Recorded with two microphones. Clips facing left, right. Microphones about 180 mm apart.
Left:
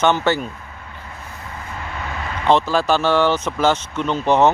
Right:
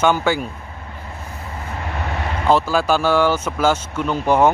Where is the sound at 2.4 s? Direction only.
5° right (ahead or behind).